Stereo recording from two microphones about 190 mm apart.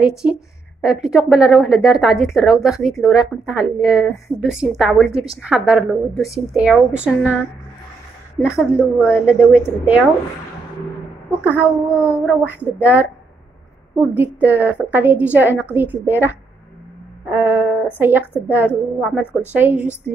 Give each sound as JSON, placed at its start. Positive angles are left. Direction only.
{"t": 0.2, "sound": "a woman's voice", "side_deg": -5}
{"t": 5.1, "sound": "a woman's voice", "side_deg": -30}
{"t": 5.4, "sound": "a woman's voice", "side_deg": -5}
{"t": 8.4, "sound": "a woman's voice", "side_deg": -5}
{"t": 11.2, "sound": "a woman's voice", "side_deg": -10}
{"t": 14.1, "sound": "a woman's voice", "side_deg": -10}